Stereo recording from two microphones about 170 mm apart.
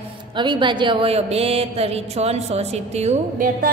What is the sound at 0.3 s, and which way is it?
A woman's voice, 25° right (ahead or behind).